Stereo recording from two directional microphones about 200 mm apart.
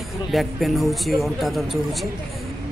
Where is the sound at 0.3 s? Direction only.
Centre (ahead or behind).